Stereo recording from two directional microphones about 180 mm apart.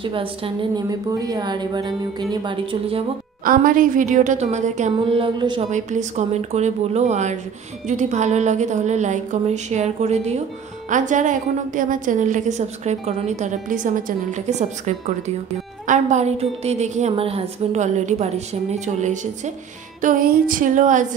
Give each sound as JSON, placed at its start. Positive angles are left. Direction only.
{"t": 0.0, "sound": "a woman's voice", "side_deg": -30}
{"t": 3.4, "sound": "a woman's voice", "side_deg": -50}
{"t": 5.0, "sound": "a woman's voice", "side_deg": -30}
{"t": 5.7, "sound": "a woman's voice", "side_deg": -40}